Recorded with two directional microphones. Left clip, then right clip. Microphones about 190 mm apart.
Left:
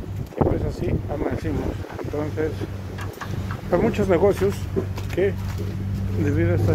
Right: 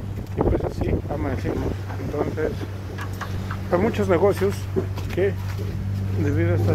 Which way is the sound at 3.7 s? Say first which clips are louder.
Left 1 dB; 20° left (ahead or behind).